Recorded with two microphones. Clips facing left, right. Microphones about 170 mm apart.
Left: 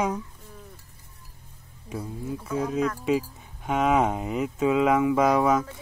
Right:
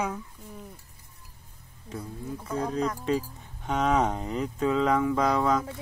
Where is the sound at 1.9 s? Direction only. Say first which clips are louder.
Left 4 dB; 10° left (ahead or behind).